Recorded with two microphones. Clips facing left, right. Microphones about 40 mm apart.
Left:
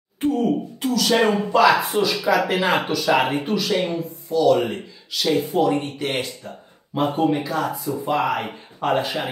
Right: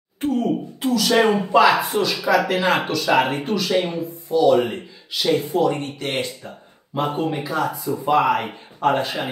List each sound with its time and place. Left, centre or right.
0.2 s a sound: centre
0.7 s speech: centre
4.3 s speech: centre